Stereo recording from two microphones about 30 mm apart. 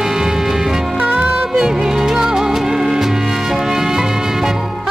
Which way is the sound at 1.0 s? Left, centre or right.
Right.